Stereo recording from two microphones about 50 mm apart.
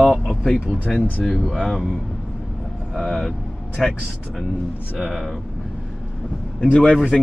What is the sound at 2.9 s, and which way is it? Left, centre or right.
Speech, centre.